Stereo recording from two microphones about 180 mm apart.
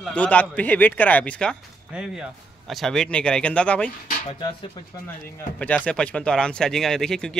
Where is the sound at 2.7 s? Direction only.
Centre (ahead or behind).